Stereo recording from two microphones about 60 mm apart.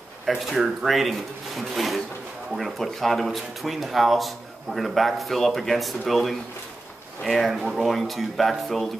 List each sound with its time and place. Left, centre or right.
0.2 s speech: centre